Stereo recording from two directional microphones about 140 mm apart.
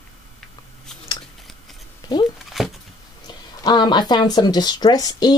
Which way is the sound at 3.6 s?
30° left (ahead or behind).